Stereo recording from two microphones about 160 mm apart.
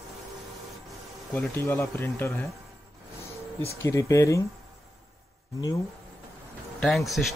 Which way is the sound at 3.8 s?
20° left (ahead or behind).